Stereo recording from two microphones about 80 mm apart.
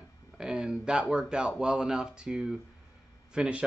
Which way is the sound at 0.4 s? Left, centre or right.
Centre.